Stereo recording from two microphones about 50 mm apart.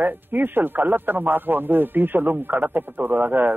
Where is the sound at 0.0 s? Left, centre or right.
Right.